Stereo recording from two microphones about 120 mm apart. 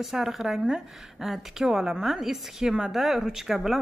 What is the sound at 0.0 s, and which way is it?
A woman's voice, centre (ahead or behind).